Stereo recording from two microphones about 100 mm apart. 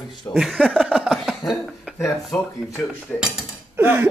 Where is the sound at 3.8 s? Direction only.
20° right (ahead or behind).